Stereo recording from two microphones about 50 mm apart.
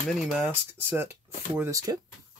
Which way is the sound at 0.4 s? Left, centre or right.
Right.